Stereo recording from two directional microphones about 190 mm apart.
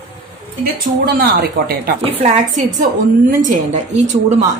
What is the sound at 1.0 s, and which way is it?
Speech, 55° right (ahead or behind).